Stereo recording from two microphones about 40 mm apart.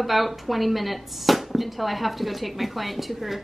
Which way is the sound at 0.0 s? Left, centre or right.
Centre.